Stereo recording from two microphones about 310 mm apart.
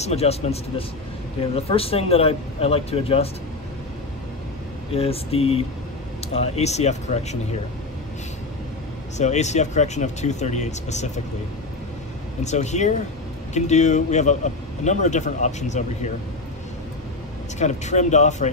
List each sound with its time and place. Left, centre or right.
0.0 s speech: centre
4.9 s speech: centre
9.2 s speech: left
12.4 s speech: left
17.6 s speech: left